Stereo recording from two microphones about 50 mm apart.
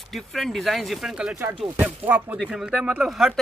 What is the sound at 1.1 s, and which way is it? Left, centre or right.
Speech, right.